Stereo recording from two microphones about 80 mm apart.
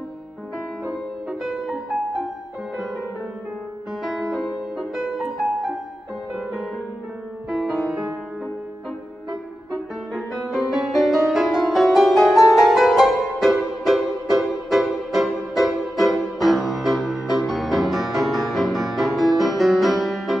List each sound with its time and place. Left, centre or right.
1.4 s music: centre
4.0 s music: centre
7.4 s music: centre
10.1 s music: centre